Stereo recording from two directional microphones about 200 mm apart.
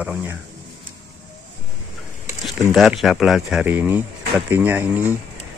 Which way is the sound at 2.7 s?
Centre (ahead or behind).